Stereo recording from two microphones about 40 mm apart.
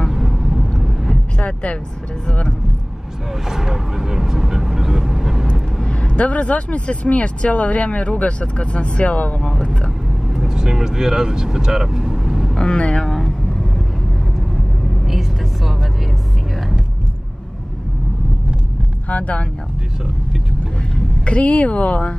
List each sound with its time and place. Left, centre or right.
0.1 s vehicle: centre
1.4 s speech: left
3.4 s vehicle: centre
5.9 s speech: left
10.3 s speech: centre
12.5 s speech: left
13.0 s vehicle: centre
15.0 s vehicle: centre
19.0 s speech: left
21.3 s speech: left